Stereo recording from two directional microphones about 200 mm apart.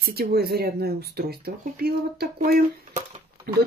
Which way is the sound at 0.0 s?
50° right (ahead or behind).